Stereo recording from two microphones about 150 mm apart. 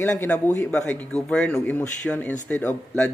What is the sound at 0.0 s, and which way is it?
A man's voice, 15° left (ahead or behind).